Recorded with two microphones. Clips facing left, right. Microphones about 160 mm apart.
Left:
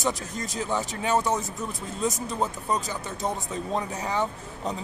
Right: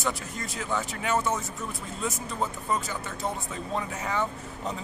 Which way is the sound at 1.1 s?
15° left (ahead or behind).